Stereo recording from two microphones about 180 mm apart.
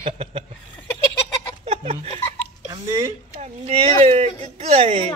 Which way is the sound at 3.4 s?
35° right (ahead or behind).